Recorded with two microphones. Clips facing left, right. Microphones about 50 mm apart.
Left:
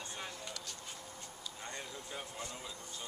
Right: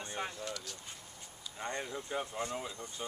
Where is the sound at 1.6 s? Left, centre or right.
Right.